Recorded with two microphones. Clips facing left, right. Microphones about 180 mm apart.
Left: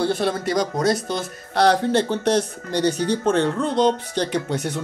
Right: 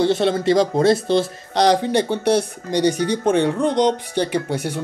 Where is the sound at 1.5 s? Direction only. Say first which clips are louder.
Right 1 dB; 15° right (ahead or behind).